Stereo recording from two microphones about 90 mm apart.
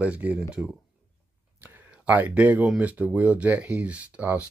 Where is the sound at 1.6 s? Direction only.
20° right (ahead or behind).